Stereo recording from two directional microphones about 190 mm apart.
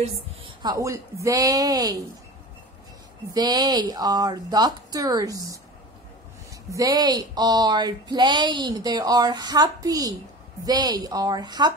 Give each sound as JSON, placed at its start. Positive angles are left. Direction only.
{"t": 0.6, "sound": "a woman's voice", "side_deg": -20}
{"t": 3.3, "sound": "speech", "side_deg": -20}
{"t": 6.7, "sound": "speech", "side_deg": -20}